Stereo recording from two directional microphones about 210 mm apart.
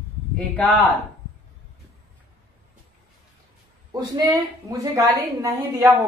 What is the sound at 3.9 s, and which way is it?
A woman's voice, 20° right (ahead or behind).